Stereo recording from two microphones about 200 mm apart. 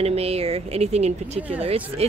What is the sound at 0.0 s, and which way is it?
Speech, 30° right (ahead or behind).